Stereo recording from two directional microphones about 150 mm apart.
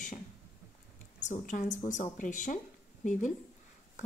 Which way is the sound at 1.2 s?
55° left (ahead or behind).